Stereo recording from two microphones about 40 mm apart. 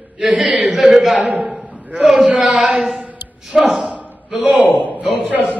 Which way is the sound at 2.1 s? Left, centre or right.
Right.